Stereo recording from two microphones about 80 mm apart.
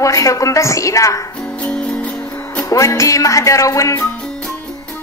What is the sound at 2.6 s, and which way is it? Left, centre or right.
A woman's voice, left.